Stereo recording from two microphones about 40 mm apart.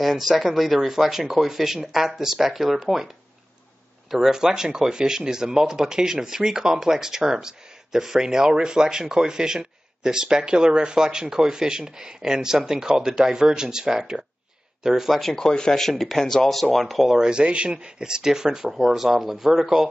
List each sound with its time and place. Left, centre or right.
0.0 s speech: centre
4.1 s speech: centre
15.3 s speech: centre
15.9 s speech: centre
17.1 s speech: centre